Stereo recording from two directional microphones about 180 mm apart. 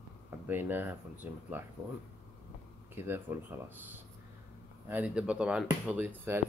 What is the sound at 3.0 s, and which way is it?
Speech, 10° right (ahead or behind).